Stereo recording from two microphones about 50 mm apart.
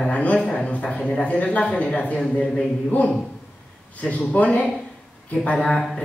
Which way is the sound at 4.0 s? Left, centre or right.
Left.